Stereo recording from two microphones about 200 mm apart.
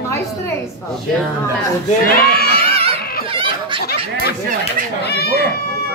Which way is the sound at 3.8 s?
50° left (ahead or behind).